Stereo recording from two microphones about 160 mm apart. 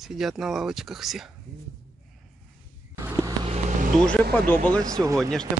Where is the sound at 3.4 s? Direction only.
45° right (ahead or behind).